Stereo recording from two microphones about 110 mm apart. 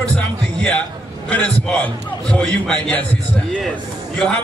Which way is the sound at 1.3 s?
10° left (ahead or behind).